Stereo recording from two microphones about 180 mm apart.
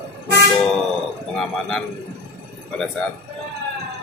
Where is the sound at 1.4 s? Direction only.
Centre (ahead or behind).